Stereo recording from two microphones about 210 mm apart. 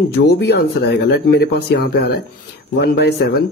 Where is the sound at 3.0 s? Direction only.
50° left (ahead or behind).